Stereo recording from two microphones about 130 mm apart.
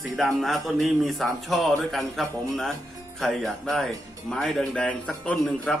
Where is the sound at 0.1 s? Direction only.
Centre (ahead or behind).